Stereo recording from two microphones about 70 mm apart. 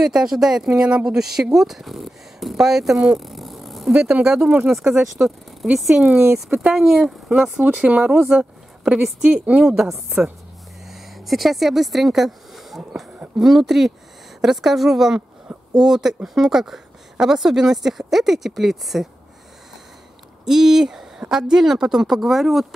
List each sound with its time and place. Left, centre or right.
0.0 s speech: centre
3.2 s a sound: centre
4.0 s speech: centre
8.4 s a sound: centre
9.0 s speech: centre
20.4 s speech: centre